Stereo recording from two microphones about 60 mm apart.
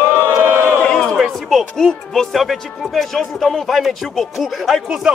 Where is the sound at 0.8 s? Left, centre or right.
Centre.